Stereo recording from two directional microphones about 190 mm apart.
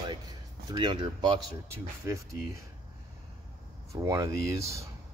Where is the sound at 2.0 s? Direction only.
15° right (ahead or behind).